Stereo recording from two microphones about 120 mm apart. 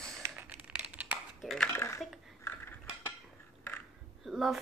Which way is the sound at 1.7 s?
20° left (ahead or behind).